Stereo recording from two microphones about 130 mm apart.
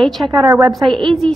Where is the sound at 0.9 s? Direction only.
40° right (ahead or behind).